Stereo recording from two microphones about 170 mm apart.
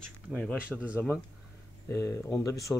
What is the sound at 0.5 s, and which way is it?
Speech, 5° right (ahead or behind).